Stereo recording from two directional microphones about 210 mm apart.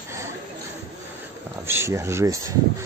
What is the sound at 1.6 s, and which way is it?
Speech, 10° right (ahead or behind).